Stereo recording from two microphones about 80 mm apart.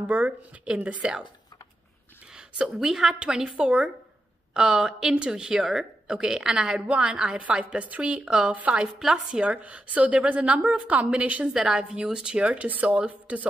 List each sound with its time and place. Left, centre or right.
0.0 s speech: right
2.3 s speech: centre